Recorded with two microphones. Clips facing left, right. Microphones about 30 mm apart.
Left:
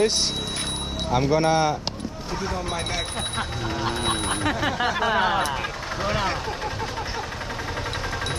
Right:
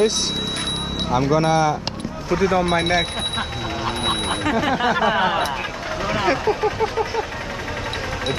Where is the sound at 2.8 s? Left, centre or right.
Right.